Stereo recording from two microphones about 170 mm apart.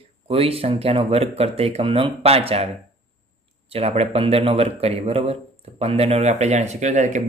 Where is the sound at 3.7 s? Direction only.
35° right (ahead or behind).